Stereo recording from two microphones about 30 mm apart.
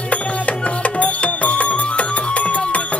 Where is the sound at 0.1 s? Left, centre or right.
Left.